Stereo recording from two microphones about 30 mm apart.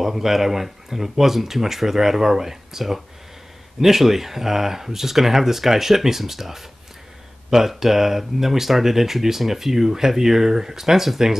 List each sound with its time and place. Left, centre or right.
0.0 s speech: centre